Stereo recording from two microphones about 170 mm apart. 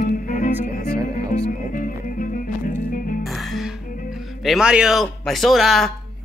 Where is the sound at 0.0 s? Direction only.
50° left (ahead or behind).